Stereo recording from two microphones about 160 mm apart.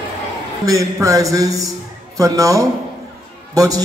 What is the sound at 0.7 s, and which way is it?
A man's voice, 20° right (ahead or behind).